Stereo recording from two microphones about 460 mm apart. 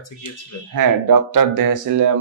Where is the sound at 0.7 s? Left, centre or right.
Right.